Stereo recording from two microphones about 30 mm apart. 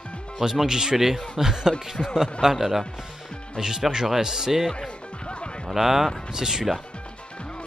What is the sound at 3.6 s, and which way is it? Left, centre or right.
Speech, centre.